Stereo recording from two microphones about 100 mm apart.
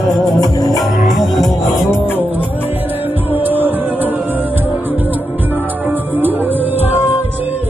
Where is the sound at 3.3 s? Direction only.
20° right (ahead or behind).